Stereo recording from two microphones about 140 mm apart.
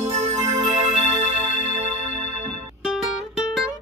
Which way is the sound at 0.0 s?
50° right (ahead or behind).